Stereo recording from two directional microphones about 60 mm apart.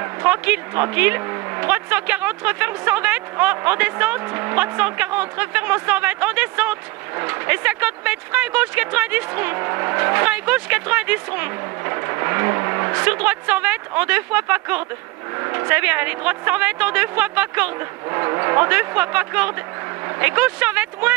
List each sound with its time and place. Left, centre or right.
0.0 s speech: right
1.2 s a sound: right
1.9 s speech: right
10.2 s speech: right
13.0 s speech: right
15.3 s vehicle: right
15.7 s speech: right
18.1 s speech: right